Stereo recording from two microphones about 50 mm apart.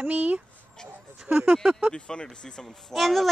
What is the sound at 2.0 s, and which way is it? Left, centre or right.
Speech, left.